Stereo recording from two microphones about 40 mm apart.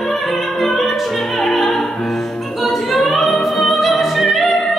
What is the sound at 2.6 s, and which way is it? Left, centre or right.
Music, centre.